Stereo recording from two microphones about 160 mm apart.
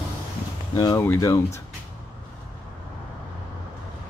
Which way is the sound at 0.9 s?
15° left (ahead or behind).